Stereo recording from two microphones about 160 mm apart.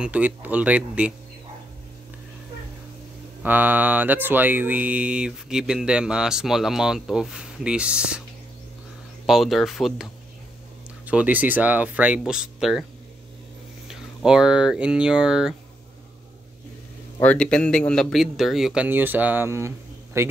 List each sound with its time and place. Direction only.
0.0 s speech: 10° right (ahead or behind)
3.4 s speech: 10° right (ahead or behind)
9.2 s speech: centre (ahead or behind)
11.1 s speech: 10° right (ahead or behind)
13.8 s speech: 5° right (ahead or behind)
17.2 s speech: 10° left (ahead or behind); by 20.3 s 15° right (ahead or behind)